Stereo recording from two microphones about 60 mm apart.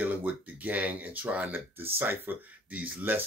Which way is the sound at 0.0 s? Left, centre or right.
Right.